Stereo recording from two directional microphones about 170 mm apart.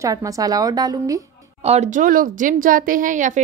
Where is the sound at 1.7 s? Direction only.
45° right (ahead or behind).